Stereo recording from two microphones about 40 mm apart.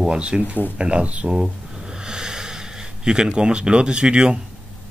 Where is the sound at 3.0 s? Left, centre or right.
Centre.